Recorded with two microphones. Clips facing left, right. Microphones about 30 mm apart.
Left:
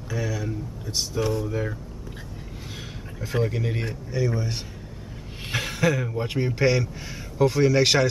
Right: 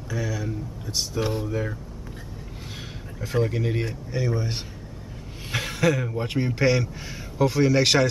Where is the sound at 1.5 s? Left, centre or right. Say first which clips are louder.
Even; centre.